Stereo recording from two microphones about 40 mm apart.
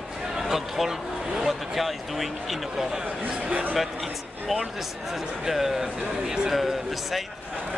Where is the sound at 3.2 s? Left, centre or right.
Right.